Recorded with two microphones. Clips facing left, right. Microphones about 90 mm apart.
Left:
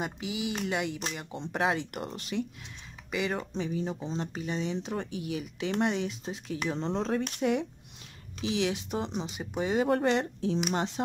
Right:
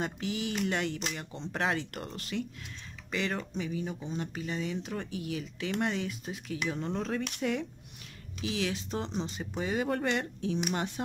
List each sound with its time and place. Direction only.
0.0 s speech: 10° left (ahead or behind)
3.5 s speech: 30° left (ahead or behind)